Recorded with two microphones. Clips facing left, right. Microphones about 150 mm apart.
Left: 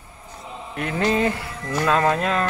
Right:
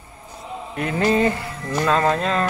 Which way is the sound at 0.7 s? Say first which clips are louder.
Right 2 dB; centre (ahead or behind).